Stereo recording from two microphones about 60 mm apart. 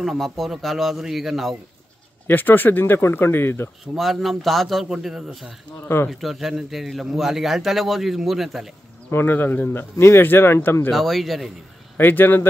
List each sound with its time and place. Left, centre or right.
0.0 s a man's voice: centre
2.2 s speech: left
3.8 s a man's voice: centre
9.1 s speech: left
10.9 s a man's voice: centre
12.0 s speech: left